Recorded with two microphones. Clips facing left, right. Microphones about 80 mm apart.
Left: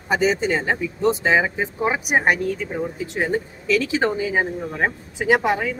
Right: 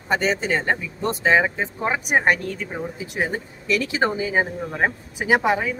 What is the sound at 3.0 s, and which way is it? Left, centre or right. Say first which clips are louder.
Speech: left 2 dB; centre.